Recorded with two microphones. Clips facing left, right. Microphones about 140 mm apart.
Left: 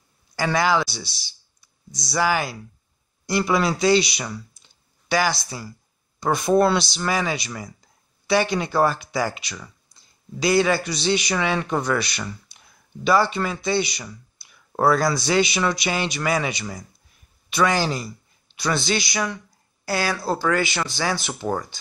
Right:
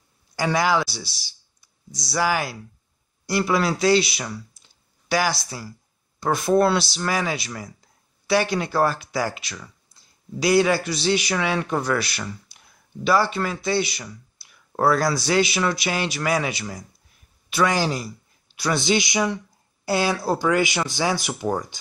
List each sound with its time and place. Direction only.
0.4 s a man's voice: 10° right (ahead or behind)